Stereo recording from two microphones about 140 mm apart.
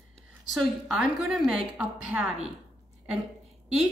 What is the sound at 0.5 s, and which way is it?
Speech, centre (ahead or behind).